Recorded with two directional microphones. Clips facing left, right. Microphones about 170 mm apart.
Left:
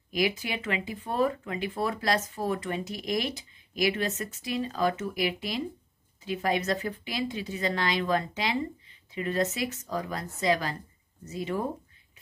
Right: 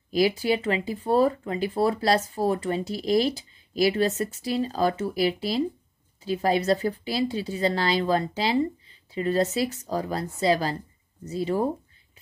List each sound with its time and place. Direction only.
0.1 s speech: 35° right (ahead or behind)